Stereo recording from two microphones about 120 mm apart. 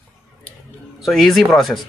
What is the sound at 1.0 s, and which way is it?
Speech, centre (ahead or behind).